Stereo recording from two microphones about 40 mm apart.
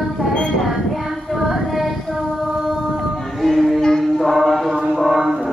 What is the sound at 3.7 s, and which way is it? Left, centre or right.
Music, centre.